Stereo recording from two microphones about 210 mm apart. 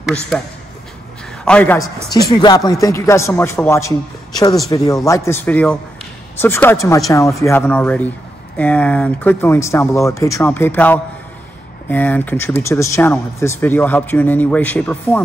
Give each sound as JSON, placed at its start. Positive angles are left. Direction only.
{"t": 1.4, "sound": "speech", "side_deg": 5}
{"t": 2.2, "sound": "speech", "side_deg": 20}